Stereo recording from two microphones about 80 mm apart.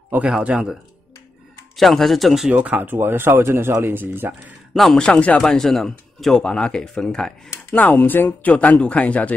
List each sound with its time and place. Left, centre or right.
0.1 s speech: centre
1.8 s speech: centre
2.5 s speech: centre
4.7 s speech: centre
5.0 s speech: centre
7.7 s speech: centre